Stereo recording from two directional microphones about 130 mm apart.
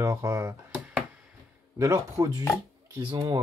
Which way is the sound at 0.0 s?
25° right (ahead or behind).